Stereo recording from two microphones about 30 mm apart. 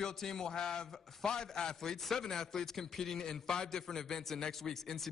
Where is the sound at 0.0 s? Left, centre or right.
Centre.